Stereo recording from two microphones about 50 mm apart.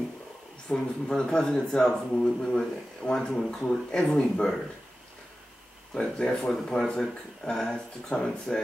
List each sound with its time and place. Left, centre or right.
0.7 s speech: centre
5.9 s speech: left
6.9 s speech: centre